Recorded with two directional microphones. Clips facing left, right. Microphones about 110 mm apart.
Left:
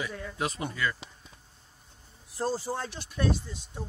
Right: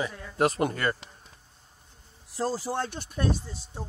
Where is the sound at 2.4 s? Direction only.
90° right.